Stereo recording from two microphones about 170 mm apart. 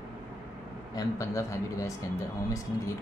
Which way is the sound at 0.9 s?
20° left (ahead or behind).